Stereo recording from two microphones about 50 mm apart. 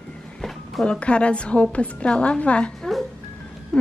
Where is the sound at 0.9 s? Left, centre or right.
Left.